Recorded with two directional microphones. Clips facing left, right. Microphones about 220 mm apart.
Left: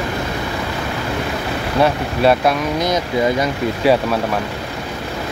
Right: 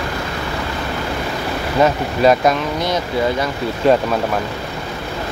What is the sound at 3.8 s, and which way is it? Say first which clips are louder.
Speech: right 1 dB; 10° left (ahead or behind).